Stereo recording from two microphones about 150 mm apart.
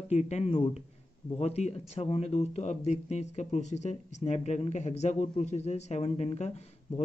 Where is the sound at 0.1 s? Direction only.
45° left (ahead or behind).